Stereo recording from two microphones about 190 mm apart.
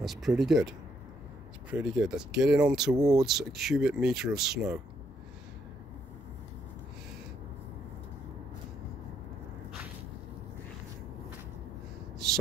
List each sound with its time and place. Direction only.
0.0 s speech: centre (ahead or behind)
2.9 s speech: 20° right (ahead or behind)
3.2 s speech: centre (ahead or behind)